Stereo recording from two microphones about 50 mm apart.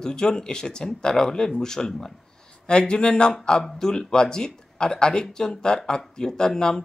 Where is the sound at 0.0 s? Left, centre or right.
Centre.